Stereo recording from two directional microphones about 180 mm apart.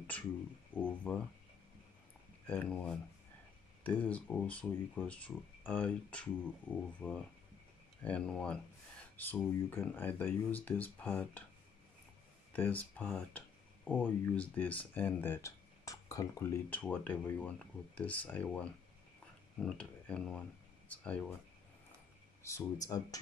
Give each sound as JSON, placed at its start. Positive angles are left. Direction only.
{"t": 0.7, "sound": "speech", "side_deg": 10}
{"t": 2.4, "sound": "speech", "side_deg": 10}
{"t": 12.5, "sound": "speech", "side_deg": 10}
{"t": 22.4, "sound": "speech", "side_deg": 15}